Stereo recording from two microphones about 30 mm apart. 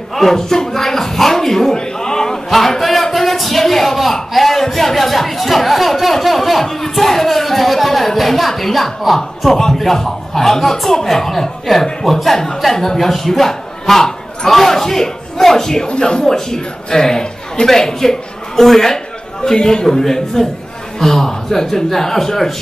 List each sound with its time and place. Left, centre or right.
0.1 s speech: centre
2.5 s a man's voice: centre
16.0 s speech: left
16.3 s a man's voice: centre